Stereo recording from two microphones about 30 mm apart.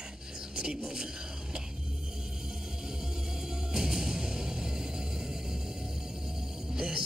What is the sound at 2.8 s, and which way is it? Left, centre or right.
Music, centre.